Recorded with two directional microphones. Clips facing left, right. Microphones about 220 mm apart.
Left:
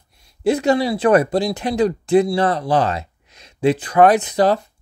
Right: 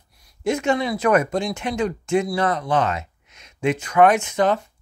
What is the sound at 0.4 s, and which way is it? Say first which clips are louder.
Speech: left 4 dB; 35° left (ahead or behind).